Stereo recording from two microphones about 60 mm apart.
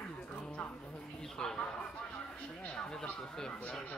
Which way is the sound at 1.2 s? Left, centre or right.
Centre.